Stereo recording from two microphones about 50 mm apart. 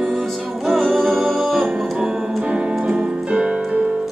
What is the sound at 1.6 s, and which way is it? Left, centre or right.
Music, centre.